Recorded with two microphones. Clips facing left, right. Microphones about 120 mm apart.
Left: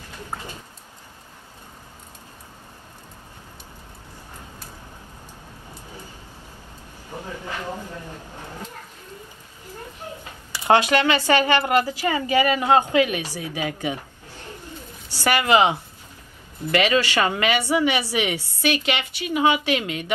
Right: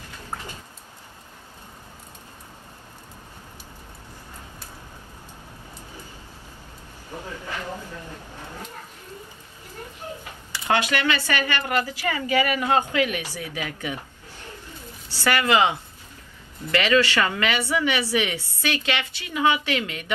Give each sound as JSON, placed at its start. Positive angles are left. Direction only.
{"t": 10.5, "sound": "a woman's voice", "side_deg": 15}
{"t": 15.2, "sound": "a woman's voice", "side_deg": 20}